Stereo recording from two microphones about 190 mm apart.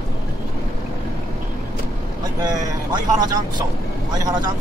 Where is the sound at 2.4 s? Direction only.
20° right (ahead or behind).